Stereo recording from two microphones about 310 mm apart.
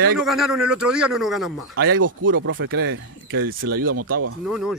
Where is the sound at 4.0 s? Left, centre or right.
Right.